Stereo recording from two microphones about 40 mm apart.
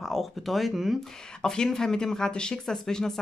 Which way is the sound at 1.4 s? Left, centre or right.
Centre.